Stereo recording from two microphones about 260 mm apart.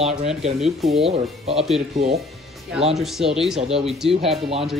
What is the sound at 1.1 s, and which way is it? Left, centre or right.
Speech, right.